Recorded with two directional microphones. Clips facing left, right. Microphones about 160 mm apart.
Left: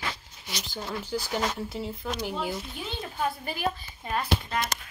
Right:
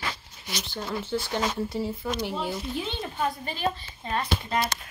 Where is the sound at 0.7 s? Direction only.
Centre (ahead or behind).